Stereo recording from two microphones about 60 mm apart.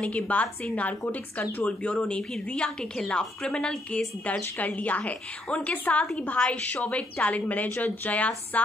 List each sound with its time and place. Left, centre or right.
0.0 s a woman's voice: left
4.3 s a woman's voice: left